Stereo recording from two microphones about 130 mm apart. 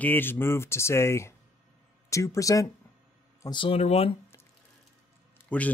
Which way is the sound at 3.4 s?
40° left (ahead or behind).